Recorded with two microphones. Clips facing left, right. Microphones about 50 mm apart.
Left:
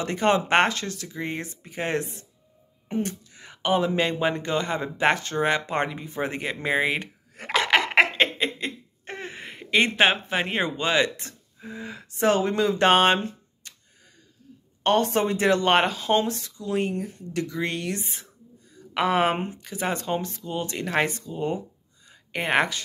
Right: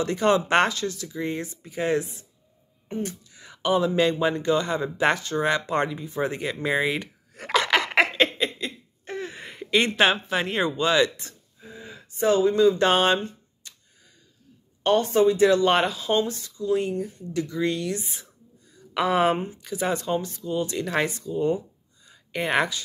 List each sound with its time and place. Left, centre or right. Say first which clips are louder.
0.0 s speech: right 1 dB; left
9.4 s speech: left 1 dB; left
11.1 s speech: left 2 dB; left
13.6 s a sound: left 1 dB; left
14.8 s speech: right 2 dB; left
19.3 s speech: right 1 dB; left
19.6 s speech: right 2 dB; left